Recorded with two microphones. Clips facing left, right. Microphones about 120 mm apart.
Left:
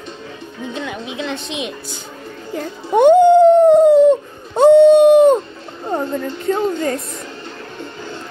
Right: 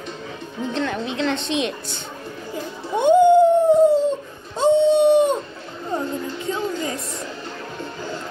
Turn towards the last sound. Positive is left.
turn(degrees=60)  # may be behind; listen again after turning